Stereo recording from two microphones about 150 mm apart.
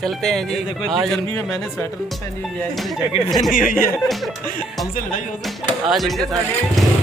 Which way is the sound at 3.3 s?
Centre (ahead or behind).